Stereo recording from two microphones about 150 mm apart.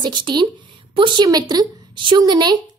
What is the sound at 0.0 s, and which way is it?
A woman's voice, 30° right (ahead or behind).